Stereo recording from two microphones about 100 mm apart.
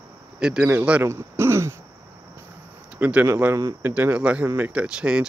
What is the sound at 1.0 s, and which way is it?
Speech, 25° right (ahead or behind).